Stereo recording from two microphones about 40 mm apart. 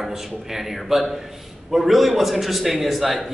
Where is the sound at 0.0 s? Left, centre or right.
Centre.